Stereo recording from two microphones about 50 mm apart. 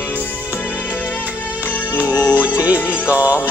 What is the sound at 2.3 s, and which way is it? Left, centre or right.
Music, right.